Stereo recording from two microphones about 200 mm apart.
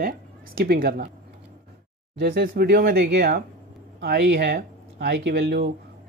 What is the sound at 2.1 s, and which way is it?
Speech, 50° right (ahead or behind).